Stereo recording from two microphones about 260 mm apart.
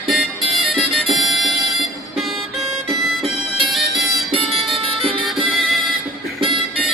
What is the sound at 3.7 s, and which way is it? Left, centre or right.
Music, centre.